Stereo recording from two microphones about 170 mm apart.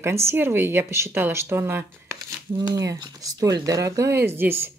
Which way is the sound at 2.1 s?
25° right (ahead or behind).